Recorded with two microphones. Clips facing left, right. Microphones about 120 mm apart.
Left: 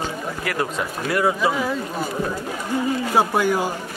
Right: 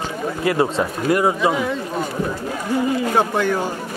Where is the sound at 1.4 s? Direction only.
Centre (ahead or behind).